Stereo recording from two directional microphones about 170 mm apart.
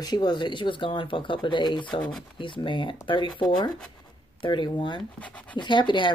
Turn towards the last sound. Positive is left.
turn(degrees=30)  # may be behind; listen again after turning